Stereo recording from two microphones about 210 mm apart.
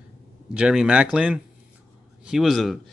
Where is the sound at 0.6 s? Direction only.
5° right (ahead or behind).